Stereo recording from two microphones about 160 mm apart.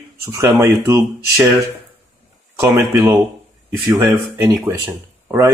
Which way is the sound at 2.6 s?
15° right (ahead or behind).